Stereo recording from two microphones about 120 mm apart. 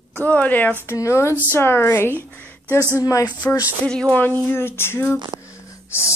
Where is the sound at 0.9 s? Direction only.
20° left (ahead or behind).